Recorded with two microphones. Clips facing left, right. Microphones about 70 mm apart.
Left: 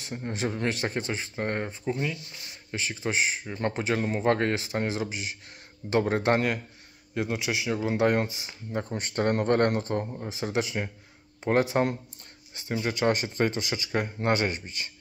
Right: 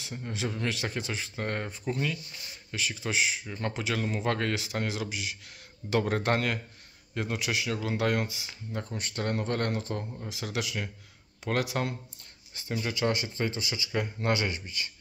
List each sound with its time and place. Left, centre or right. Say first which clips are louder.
0.0 s speech: left 4 dB; left; by 2.1 s centre
2.7 s speech: left 2 dB; left
3.4 s speech: left 4 dB; left
5.9 s speech: left 3 dB; centre; by 10.1 s left
10.1 s speech: left 5 dB; left
12.5 s speech: left 3 dB; centre
13.1 s speech: left 5 dB; left